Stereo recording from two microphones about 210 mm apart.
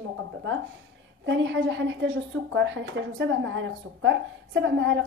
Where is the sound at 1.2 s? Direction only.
60° right (ahead or behind).